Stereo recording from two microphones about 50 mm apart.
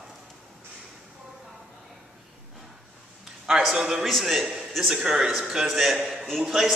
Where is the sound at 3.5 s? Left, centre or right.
Centre.